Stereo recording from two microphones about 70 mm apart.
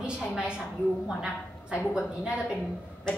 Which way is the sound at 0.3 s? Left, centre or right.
Centre.